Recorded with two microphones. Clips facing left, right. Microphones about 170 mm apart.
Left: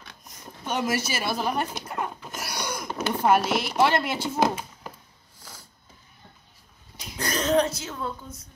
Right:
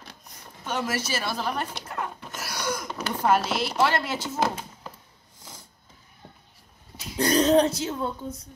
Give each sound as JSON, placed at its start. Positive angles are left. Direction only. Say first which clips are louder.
{"t": 0.7, "sound": "speech", "louder": "left 2 dB", "side_deg": 15}
{"t": 7.2, "sound": "speech", "louder": "right 4 dB", "side_deg": -30}